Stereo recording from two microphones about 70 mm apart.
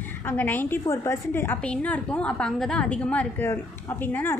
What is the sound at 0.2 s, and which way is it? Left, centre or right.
A woman's voice, left.